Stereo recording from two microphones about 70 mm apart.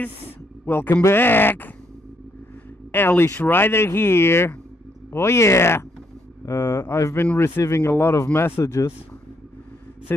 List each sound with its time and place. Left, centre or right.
0.7 s speech: left
2.9 s speech: left